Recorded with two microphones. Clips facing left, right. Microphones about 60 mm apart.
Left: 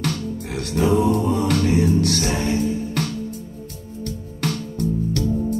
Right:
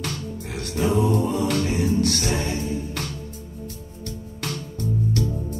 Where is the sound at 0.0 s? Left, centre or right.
Left.